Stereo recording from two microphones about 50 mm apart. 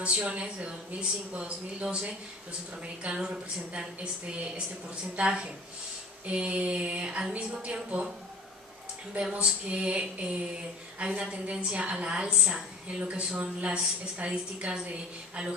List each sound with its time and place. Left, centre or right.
0.0 s a woman's voice: right
9.1 s a woman's voice: right
12.3 s a woman's voice: centre
12.8 s a woman's voice: right